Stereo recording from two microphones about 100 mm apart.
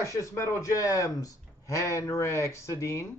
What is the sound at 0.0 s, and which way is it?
A man's voice, 30° left (ahead or behind).